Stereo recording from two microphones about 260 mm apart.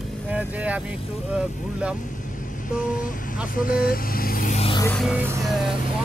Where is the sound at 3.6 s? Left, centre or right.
Left.